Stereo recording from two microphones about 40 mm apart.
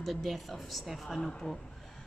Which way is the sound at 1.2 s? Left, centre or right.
Centre.